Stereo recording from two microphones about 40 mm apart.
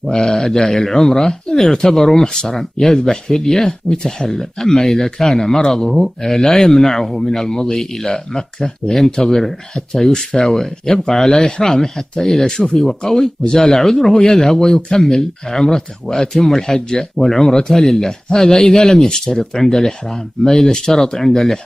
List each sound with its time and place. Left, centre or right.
0.1 s speech: centre
3.9 s speech: centre
11.6 s speech: centre